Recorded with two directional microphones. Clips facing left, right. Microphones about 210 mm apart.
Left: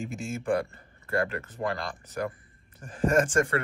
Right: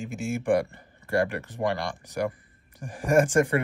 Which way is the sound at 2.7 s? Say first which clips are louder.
Right 2 dB; 15° right (ahead or behind).